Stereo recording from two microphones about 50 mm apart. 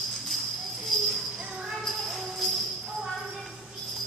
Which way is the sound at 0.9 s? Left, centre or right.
Centre.